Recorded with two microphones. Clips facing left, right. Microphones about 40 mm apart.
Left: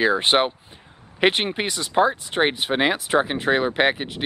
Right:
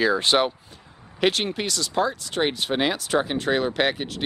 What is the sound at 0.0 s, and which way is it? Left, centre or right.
Speech, left.